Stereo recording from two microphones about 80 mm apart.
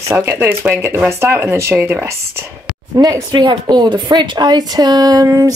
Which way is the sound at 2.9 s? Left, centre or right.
Right.